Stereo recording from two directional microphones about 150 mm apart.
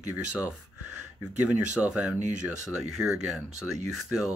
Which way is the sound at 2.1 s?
55° right (ahead or behind).